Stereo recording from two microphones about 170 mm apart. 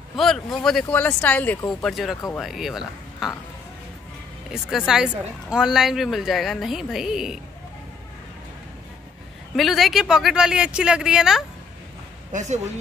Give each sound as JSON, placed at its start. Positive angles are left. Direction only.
{"t": 0.1, "sound": "speech", "side_deg": 0}
{"t": 4.6, "sound": "speech", "side_deg": -5}
{"t": 9.6, "sound": "speech", "side_deg": 0}
{"t": 12.3, "sound": "speech", "side_deg": -45}